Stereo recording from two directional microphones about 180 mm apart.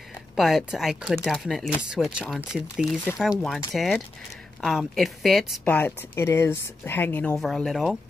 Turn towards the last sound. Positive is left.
turn(degrees=0)  # may be behind; listen again after turning